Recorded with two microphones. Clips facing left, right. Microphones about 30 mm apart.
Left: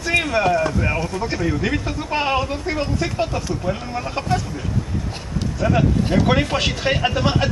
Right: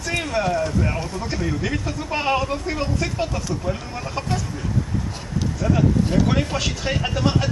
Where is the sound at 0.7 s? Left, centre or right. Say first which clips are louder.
Left 3 dB; left.